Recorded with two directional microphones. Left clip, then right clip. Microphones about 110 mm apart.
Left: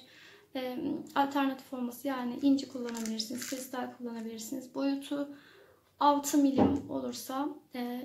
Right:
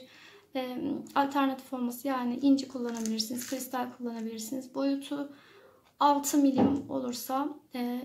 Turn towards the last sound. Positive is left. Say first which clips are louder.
# right 3 dB
turn(degrees=-30)  # may be behind; listen again after turning